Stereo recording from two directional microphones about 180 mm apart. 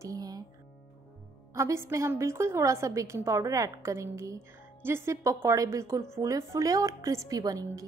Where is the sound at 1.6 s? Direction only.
15° right (ahead or behind).